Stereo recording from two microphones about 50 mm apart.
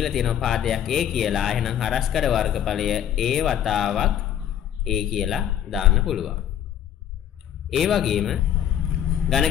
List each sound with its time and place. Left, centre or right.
0.0 s speech: centre
7.7 s speech: centre
9.2 s vehicle: centre